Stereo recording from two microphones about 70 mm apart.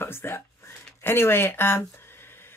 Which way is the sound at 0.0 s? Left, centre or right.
Left.